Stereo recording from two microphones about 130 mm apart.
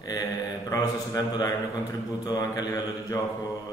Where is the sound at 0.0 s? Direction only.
30° left (ahead or behind).